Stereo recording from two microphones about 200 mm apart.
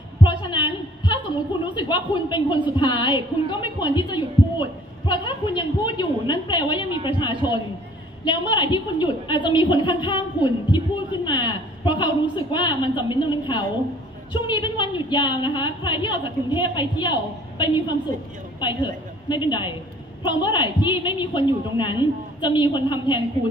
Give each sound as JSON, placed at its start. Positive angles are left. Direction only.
{"t": 0.2, "sound": "a woman's voice", "side_deg": 25}